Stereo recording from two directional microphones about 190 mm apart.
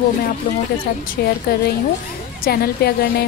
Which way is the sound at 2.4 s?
55° left (ahead or behind).